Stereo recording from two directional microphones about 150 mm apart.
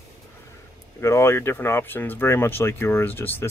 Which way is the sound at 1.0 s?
20° left (ahead or behind).